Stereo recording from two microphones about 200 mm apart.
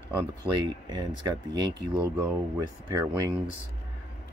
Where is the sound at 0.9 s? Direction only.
20° right (ahead or behind).